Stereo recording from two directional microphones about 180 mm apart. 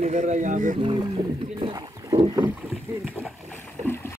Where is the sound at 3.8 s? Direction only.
15° left (ahead or behind).